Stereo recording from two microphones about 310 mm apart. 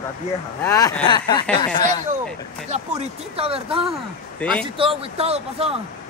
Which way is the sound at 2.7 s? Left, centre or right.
Centre.